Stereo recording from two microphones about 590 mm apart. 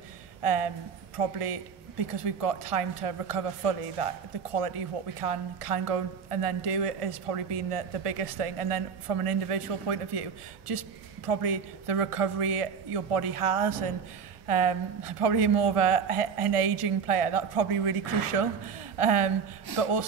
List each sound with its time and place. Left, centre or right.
0.4 s a woman's voice: right